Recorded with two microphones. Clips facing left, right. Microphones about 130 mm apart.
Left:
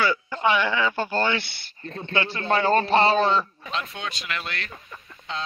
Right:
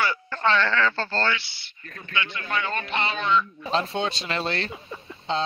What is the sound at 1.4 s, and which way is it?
Speech, 55° left (ahead or behind).